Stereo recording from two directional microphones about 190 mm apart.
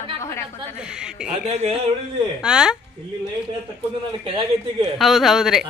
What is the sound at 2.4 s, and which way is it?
Speech, 5° right (ahead or behind).